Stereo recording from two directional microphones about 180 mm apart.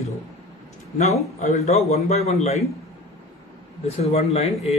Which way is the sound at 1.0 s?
40° left (ahead or behind).